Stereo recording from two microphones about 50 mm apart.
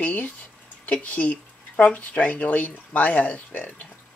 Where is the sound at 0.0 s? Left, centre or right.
Left.